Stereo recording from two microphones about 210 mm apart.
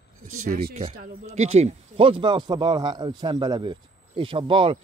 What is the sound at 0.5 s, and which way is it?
Speech, 45° right (ahead or behind).